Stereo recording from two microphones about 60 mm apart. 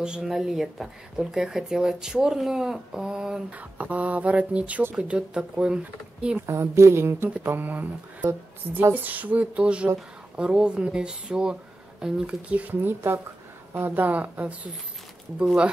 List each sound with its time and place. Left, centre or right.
0.0 s speech: centre
3.5 s speech: right
6.4 s speech: right
7.5 s speech: right
12.8 s speech: right
13.7 s speech: right